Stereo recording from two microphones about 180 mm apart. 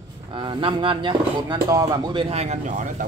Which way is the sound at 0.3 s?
25° right (ahead or behind).